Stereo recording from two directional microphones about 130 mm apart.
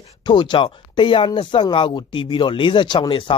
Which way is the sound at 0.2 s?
35° left (ahead or behind).